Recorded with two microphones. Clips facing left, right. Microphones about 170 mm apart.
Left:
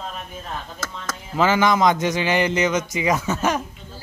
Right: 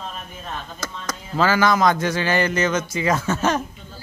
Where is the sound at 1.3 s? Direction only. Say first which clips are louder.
Even; 20° left (ahead or behind).